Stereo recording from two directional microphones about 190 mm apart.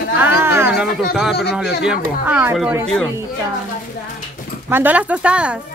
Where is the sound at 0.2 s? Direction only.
10° right (ahead or behind).